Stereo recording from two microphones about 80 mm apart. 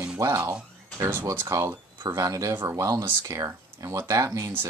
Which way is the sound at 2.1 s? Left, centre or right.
Right.